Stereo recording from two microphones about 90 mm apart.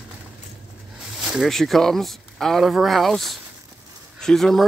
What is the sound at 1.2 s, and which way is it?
Speech, 5° right (ahead or behind).